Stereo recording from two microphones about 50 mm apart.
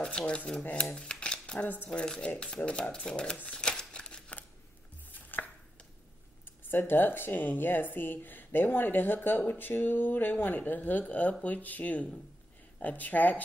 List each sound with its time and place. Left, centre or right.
0.0 s speech: centre
0.7 s shuffling cards: centre
1.9 s speech: left
3.4 s crumpling: centre
5.1 s chopping: left
6.7 s speech: left